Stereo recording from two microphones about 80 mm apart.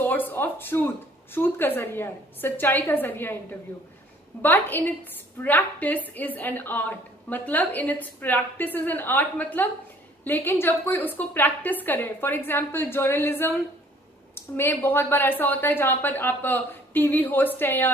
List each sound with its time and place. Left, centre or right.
0.0 s speech: left
4.4 s a woman's voice: left